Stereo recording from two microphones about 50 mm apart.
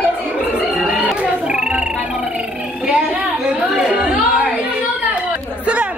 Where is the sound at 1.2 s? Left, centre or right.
Right.